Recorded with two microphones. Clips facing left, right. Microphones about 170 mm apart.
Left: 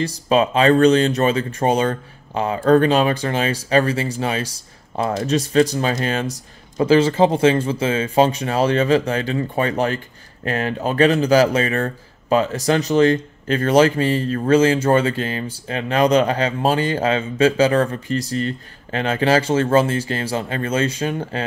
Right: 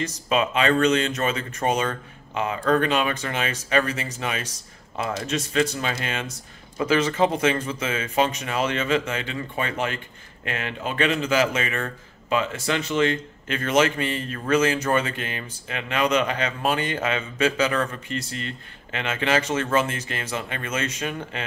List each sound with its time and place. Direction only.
0.0 s speech: 35° left (ahead or behind)